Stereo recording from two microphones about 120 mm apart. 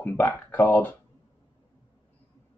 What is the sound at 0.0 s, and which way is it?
Speech, 15° left (ahead or behind).